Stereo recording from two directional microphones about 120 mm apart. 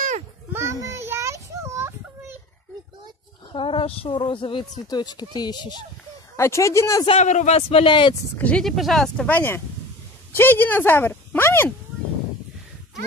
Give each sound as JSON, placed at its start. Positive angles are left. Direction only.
{"t": 0.5, "sound": "a sound", "side_deg": -25}
{"t": 3.5, "sound": "speech", "side_deg": 45}
{"t": 6.3, "sound": "speech", "side_deg": 25}
{"t": 7.2, "sound": "speech", "side_deg": 75}
{"t": 8.4, "sound": "speech", "side_deg": 10}